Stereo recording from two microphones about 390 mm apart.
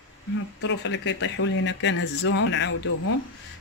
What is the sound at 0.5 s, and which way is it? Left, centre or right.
Speech, left.